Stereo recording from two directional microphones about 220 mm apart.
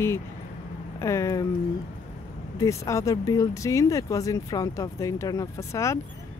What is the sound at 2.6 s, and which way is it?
Speech, 15° left (ahead or behind).